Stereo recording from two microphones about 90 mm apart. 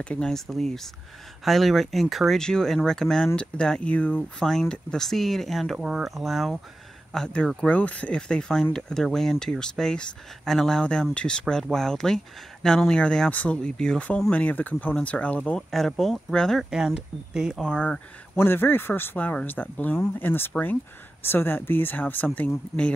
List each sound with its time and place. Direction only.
0.0 s speech: 10° left (ahead or behind)
15.7 s speech: 5° left (ahead or behind)
16.7 s speech: 5° right (ahead or behind)
17.6 s speech: 10° left (ahead or behind)
18.3 s speech: 25° left (ahead or behind)